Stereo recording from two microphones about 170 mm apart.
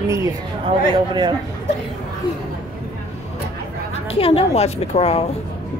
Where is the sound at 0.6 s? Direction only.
30° right (ahead or behind).